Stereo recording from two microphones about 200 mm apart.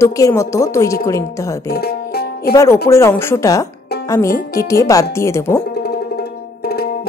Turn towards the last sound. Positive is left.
turn(degrees=50)  # may be behind; listen again after turning